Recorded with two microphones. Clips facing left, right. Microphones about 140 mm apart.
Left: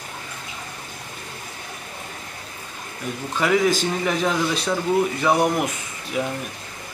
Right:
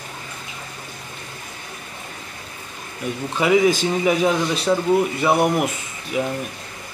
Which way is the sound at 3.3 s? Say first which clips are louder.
Right 3 dB; 5° right (ahead or behind).